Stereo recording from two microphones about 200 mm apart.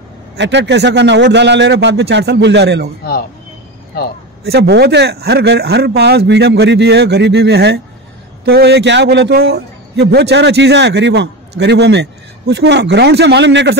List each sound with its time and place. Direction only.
0.4 s a man's voice: 60° right (ahead or behind)
3.9 s speech: 50° left (ahead or behind)
4.5 s a man's voice: 55° right (ahead or behind)